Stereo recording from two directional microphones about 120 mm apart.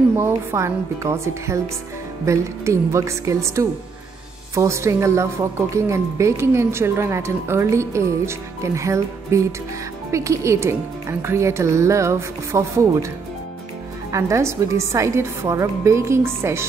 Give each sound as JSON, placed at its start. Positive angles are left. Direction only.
{"t": 0.2, "sound": "a woman's voice", "side_deg": -20}
{"t": 14.1, "sound": "a woman's voice", "side_deg": -25}